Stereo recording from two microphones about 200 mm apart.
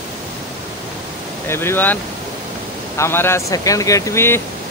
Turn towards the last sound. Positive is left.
turn(degrees=10)  # may be behind; listen again after turning